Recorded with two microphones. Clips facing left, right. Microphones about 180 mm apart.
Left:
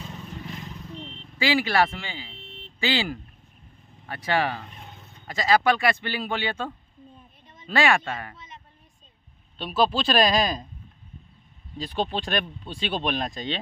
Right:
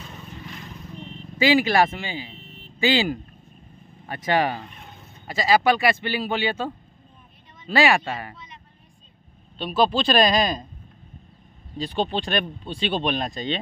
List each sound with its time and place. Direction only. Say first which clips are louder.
1.4 s speech: right 4 dB; 15° right (ahead or behind)
2.3 s a sound: even; 90° left
2.8 s speech: right 5 dB; 15° right (ahead or behind)
5.2 s speech: right 2 dB; 5° right (ahead or behind)
9.8 s speech: right 2 dB; centre (ahead or behind)
11.8 s speech: right 3 dB; centre (ahead or behind)